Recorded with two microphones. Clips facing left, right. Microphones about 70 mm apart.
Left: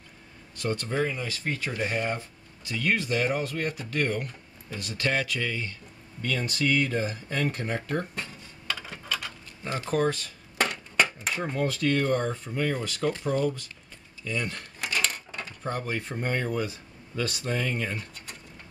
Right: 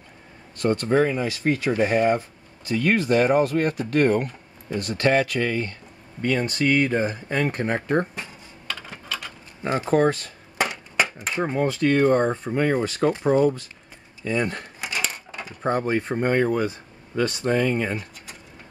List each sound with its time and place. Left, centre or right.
0.6 s speech: right
1.8 s speech: right
6.2 s speech: right
8.6 s coin: centre
9.9 s speech: right
10.6 s a sound: centre
11.3 s speech: right
14.2 s speech: right
14.8 s a sound: centre
15.7 s speech: right
17.9 s a sound: centre